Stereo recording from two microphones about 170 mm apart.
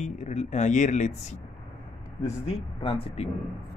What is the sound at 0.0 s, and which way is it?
Speech, 45° left (ahead or behind).